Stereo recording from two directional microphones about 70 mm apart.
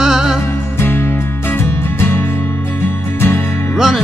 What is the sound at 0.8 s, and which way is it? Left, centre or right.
Music, left.